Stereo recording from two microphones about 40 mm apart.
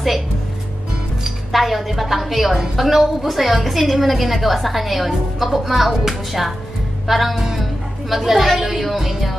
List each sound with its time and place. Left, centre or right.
1.2 s a woman's voice: centre